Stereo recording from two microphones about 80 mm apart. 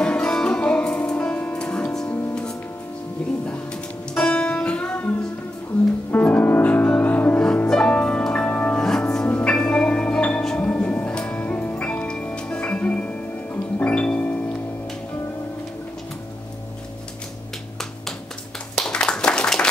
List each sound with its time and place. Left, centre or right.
0.0 s music: centre
4.1 s music: centre
8.8 s music: centre
18.9 s a sound: centre